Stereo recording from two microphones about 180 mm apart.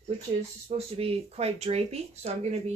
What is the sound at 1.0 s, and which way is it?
Speech, 35° right (ahead or behind).